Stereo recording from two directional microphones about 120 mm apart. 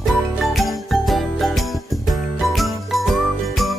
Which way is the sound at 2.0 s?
Centre (ahead or behind).